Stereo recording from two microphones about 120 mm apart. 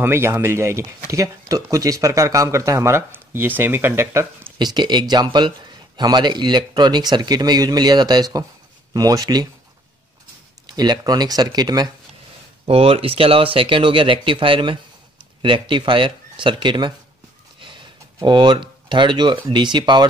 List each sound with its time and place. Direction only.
0.0 s speech: 20° right (ahead or behind)
4.6 s speech: 35° right (ahead or behind)
10.7 s speech: 35° right (ahead or behind)
12.6 s speech: 50° right (ahead or behind)
17.6 s a sound: 45° right (ahead or behind)
19.4 s speech: 40° right (ahead or behind)